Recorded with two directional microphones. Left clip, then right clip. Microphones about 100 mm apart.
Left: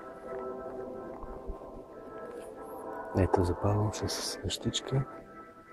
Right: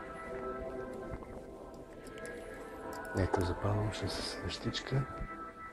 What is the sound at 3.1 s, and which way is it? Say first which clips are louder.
Speech: left 6 dB; 30° left (ahead or behind).